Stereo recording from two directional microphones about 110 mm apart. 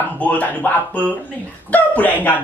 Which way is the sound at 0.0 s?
15° left (ahead or behind).